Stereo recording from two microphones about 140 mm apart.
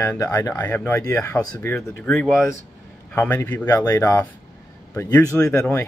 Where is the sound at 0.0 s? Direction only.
20° left (ahead or behind).